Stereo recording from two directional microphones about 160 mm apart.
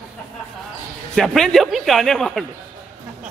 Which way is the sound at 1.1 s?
Centre (ahead or behind).